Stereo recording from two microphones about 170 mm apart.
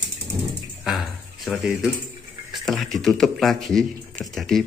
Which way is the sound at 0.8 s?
Centre (ahead or behind).